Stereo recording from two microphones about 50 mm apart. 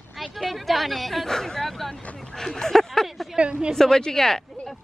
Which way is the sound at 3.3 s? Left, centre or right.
Right.